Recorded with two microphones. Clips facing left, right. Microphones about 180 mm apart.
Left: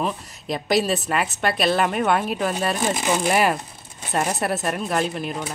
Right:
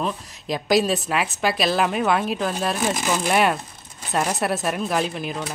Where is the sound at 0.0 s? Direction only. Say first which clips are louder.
Left 1 dB; centre (ahead or behind).